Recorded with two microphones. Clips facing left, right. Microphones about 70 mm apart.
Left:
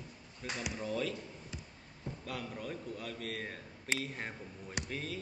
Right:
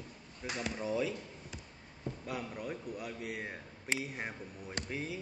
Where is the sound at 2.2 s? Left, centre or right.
Centre.